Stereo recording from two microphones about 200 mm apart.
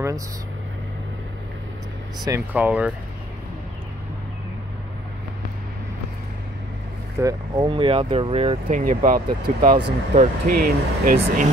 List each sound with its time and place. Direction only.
2.2 s speech: 10° right (ahead or behind)
7.2 s speech: 15° right (ahead or behind); by 9.8 s 40° right (ahead or behind)
9.8 s speech: 25° right (ahead or behind)
10.6 s speech: 45° right (ahead or behind)